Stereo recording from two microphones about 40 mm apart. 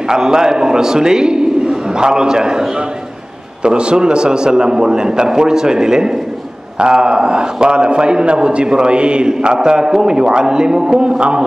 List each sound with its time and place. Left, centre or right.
0.1 s a man's voice: centre